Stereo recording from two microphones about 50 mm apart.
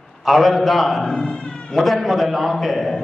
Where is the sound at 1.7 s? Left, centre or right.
Centre.